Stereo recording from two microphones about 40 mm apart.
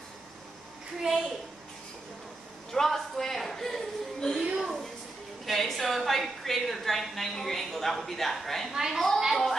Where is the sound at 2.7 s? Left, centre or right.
Centre.